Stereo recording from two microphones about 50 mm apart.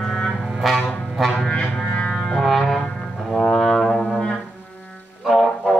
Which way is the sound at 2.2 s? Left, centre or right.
Centre.